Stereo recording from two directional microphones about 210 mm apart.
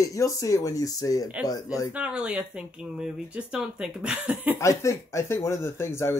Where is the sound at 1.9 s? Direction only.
5° right (ahead or behind).